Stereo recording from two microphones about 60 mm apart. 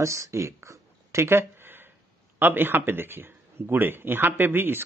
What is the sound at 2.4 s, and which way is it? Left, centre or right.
Speech, right.